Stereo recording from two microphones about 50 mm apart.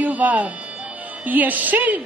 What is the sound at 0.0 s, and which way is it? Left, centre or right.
Music, right.